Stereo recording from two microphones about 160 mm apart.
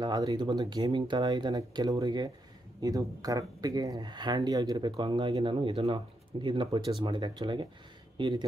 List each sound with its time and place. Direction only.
0.0 s speech: 25° right (ahead or behind)